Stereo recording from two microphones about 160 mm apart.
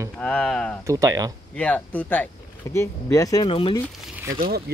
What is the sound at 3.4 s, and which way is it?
Speech, 35° left (ahead or behind).